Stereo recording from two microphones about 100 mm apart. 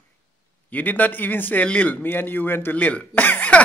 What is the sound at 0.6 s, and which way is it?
A man's voice, 15° left (ahead or behind).